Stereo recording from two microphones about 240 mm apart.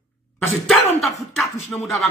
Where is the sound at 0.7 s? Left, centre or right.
Centre.